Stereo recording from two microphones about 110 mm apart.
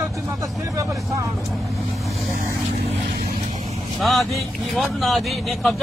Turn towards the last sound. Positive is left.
turn(degrees=0)  # may be behind; listen again after turning